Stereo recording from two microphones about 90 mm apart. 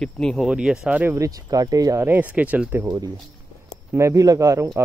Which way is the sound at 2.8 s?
45° right (ahead or behind).